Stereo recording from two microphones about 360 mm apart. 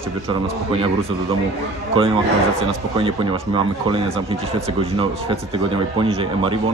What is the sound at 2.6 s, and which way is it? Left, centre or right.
Speech, centre.